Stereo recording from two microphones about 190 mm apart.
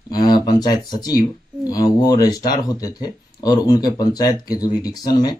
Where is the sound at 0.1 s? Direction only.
20° left (ahead or behind).